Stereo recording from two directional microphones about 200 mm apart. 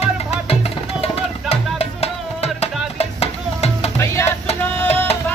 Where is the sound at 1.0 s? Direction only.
30° left (ahead or behind).